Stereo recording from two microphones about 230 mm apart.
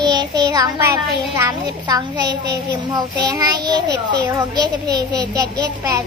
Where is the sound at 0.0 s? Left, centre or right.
Centre.